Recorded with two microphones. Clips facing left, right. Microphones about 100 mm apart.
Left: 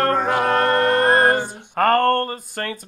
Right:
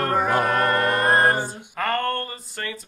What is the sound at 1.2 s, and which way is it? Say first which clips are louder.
Speech: left 3 dB; 50° left (ahead or behind).